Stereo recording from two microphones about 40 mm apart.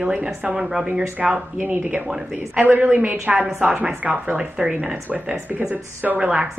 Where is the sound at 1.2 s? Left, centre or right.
Centre.